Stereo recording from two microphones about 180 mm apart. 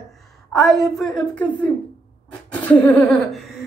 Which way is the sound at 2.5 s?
5° left (ahead or behind).